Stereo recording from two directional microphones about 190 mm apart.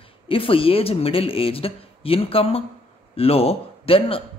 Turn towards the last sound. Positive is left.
turn(degrees=30)  # may be behind; listen again after turning